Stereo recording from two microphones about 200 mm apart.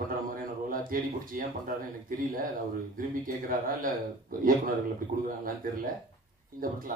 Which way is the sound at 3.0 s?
45° right (ahead or behind).